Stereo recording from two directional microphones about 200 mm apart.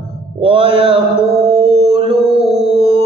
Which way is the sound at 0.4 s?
25° right (ahead or behind).